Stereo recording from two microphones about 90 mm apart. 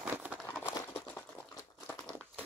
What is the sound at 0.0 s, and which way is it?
Crumpling, 10° right (ahead or behind).